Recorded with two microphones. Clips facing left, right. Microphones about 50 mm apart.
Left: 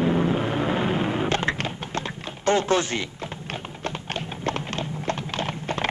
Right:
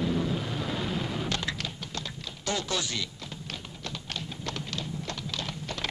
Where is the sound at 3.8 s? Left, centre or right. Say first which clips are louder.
Left 7 dB; left.